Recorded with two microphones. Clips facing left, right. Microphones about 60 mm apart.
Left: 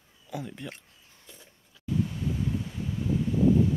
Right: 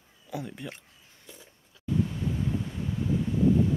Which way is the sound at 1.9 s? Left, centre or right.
Centre.